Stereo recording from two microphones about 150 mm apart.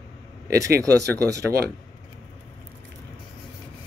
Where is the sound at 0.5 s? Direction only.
20° right (ahead or behind).